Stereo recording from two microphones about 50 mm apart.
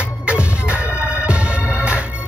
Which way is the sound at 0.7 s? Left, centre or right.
Right.